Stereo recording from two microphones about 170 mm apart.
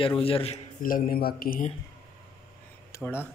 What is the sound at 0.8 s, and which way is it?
Speech, 60° left (ahead or behind).